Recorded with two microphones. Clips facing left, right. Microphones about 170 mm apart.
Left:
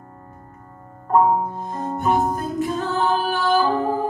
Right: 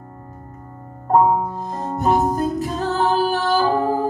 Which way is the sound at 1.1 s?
35° right (ahead or behind).